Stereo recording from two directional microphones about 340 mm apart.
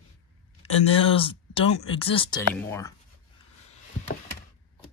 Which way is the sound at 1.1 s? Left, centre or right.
Centre.